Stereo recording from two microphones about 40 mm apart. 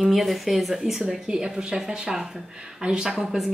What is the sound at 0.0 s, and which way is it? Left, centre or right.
Speech, centre.